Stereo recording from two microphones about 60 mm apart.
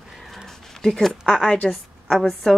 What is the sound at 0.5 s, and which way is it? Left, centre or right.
A woman's voice, centre.